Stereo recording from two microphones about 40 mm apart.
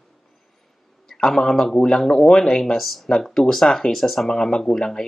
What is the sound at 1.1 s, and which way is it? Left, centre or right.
Speech, centre.